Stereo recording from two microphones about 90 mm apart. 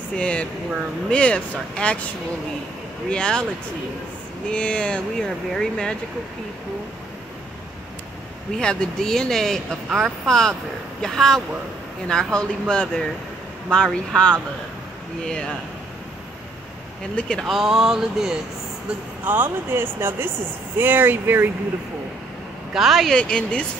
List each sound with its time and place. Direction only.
0.2 s speech: 10° left (ahead or behind)
3.1 s speech: 10° left (ahead or behind)
4.5 s speech: 10° left (ahead or behind)
8.5 s speech: 5° left (ahead or behind)
17.1 s speech: 10° left (ahead or behind)
17.5 s speech: 5° right (ahead or behind)
19.2 s speech: 25° right (ahead or behind)
22.8 s speech: centre (ahead or behind)